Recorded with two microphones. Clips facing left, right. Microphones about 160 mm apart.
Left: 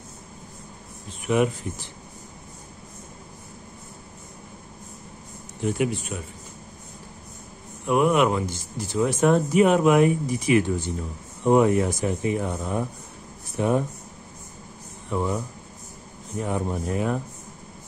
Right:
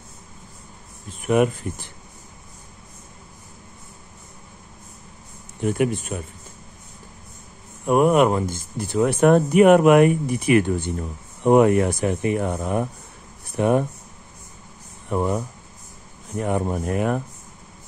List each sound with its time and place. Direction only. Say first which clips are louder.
1.2 s speech: right 3 dB; 50° right (ahead or behind)
5.6 s speech: right 3 dB; 55° right (ahead or behind)
7.8 s speech: right 3 dB; 45° right (ahead or behind); by 13.8 s 60° right (ahead or behind)
15.0 s speech: right 3 dB; 50° right (ahead or behind)